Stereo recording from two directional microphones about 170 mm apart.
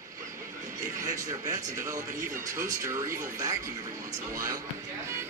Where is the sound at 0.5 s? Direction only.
50° right (ahead or behind).